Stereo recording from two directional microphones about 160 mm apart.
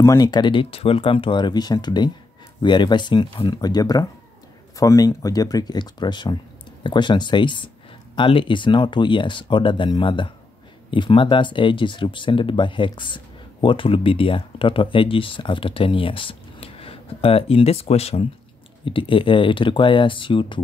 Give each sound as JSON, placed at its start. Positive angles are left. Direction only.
{"t": 0.0, "sound": "speech", "side_deg": 20}